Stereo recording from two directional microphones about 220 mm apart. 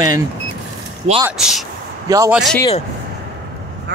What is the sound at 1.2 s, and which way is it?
Speech, 5° right (ahead or behind).